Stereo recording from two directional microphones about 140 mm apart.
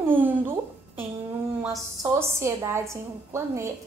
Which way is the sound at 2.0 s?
20° right (ahead or behind).